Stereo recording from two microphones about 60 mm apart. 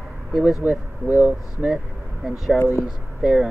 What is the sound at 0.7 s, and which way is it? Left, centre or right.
Speech, right.